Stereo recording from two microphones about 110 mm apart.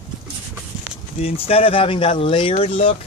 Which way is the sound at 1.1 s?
65° left (ahead or behind).